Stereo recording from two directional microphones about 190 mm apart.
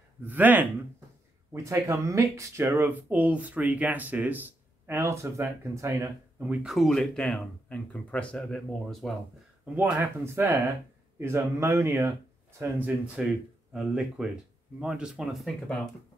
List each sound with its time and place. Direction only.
0.2 s speech: 10° right (ahead or behind)
9.8 s speech: 10° right (ahead or behind)